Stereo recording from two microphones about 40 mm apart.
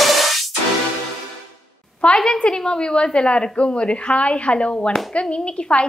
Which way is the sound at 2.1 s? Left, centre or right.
Centre.